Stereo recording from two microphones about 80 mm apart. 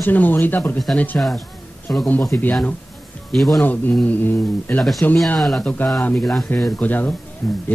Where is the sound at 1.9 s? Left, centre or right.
Centre.